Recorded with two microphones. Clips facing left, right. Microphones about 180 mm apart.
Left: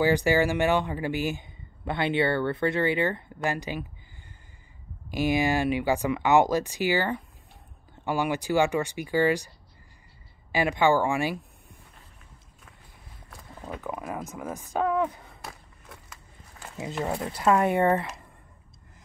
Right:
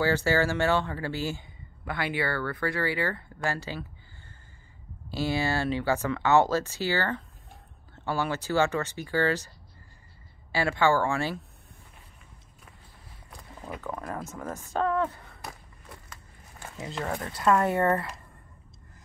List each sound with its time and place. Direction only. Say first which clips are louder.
0.0 s speech: left 3 dB; 15° left (ahead or behind)
5.1 s speech: left 4 dB; 15° left (ahead or behind)
10.5 s speech: left 2 dB; 15° left (ahead or behind)
13.7 s speech: left 1 dB; 10° left (ahead or behind)
15.4 s a sound: right 1 dB; centre (ahead or behind)
17.0 s speech: left 2 dB; 20° left (ahead or behind)